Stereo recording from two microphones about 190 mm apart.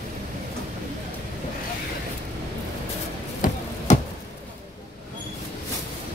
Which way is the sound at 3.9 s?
40° left (ahead or behind).